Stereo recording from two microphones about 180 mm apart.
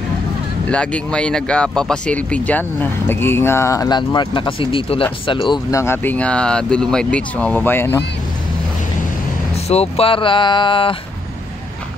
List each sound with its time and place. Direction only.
0.7 s speech: 5° left (ahead or behind)
9.7 s speech: 35° left (ahead or behind)